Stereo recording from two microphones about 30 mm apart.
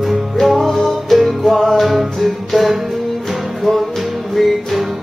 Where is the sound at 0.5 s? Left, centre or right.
Centre.